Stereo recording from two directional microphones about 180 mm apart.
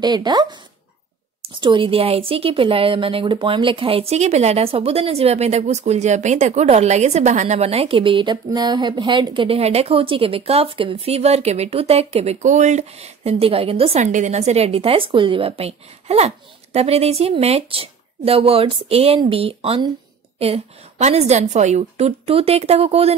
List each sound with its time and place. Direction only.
0.0 s a woman's voice: 25° right (ahead or behind)